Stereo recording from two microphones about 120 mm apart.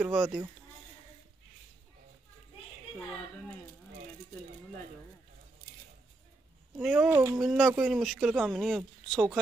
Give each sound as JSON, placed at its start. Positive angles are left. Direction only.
{"t": 0.0, "sound": "speech", "side_deg": -5}
{"t": 6.8, "sound": "speech", "side_deg": -5}
{"t": 7.1, "sound": "speech", "side_deg": -25}
{"t": 7.3, "sound": "speech", "side_deg": -5}